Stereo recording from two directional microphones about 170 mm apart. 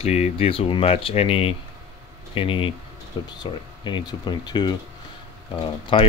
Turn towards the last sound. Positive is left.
turn(degrees=30)  # may be behind; listen again after turning